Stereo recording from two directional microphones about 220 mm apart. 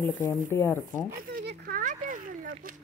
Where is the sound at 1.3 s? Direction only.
40° right (ahead or behind).